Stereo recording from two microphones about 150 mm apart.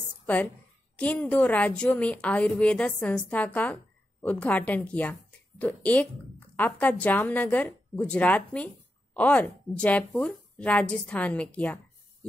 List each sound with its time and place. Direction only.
0.9 s a woman's voice: 5° left (ahead or behind)